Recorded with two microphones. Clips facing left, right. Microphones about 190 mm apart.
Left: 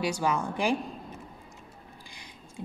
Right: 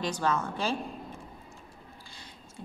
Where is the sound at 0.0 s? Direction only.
10° left (ahead or behind).